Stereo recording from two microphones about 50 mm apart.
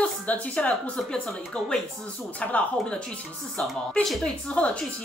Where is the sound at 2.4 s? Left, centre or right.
Left.